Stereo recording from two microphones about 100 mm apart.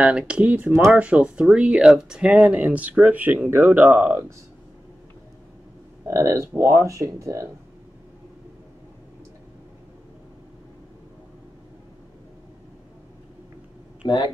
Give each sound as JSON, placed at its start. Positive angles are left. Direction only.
{"t": 0.0, "sound": "speech", "side_deg": -10}
{"t": 6.0, "sound": "speech", "side_deg": -30}
{"t": 14.0, "sound": "speech", "side_deg": 50}